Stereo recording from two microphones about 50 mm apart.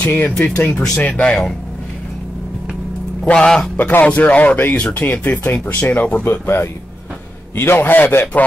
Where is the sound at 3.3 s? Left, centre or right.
Centre.